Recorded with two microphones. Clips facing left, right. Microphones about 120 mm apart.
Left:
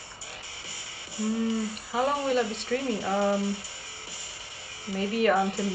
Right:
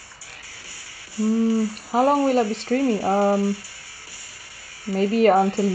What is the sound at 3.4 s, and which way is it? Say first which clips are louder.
Speech: right 7 dB; 20° left (ahead or behind).